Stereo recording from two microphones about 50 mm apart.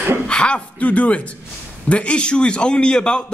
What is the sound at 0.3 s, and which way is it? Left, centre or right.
A man's voice, left.